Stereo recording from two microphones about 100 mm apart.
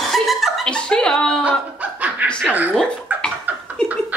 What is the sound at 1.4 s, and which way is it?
Dog, 15° right (ahead or behind).